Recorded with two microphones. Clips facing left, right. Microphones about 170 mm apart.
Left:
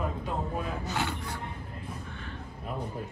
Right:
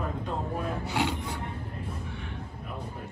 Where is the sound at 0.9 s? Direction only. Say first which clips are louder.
Right 3 dB; 15° right (ahead or behind).